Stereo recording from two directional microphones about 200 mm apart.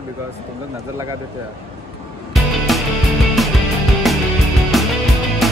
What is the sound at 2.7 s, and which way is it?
Music, centre (ahead or behind).